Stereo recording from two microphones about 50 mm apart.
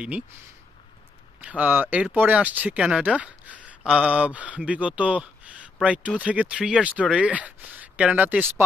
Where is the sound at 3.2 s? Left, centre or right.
Right.